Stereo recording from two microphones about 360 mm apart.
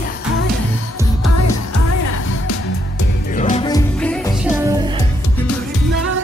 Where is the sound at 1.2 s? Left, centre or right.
Left.